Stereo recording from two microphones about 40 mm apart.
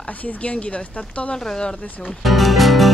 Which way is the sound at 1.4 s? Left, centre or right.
Centre.